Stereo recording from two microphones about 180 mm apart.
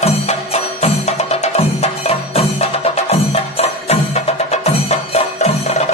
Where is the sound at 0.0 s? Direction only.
35° left (ahead or behind).